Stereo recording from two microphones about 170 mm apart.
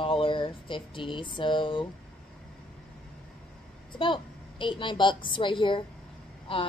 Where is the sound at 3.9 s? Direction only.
30° left (ahead or behind).